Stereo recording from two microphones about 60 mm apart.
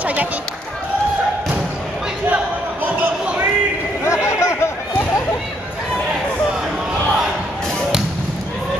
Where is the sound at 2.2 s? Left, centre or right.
Right.